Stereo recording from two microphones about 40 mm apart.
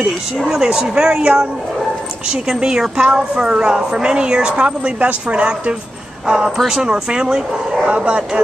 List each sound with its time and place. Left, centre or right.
0.4 s a woman's voice: centre
7.8 s a woman's voice: right